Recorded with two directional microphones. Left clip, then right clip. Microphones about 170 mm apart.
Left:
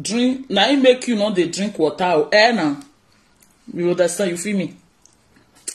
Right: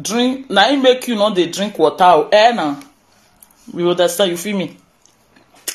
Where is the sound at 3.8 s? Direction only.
40° right (ahead or behind).